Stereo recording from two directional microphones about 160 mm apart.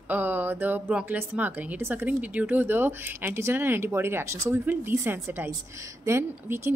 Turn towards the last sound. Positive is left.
turn(degrees=-15)  # may be behind; listen again after turning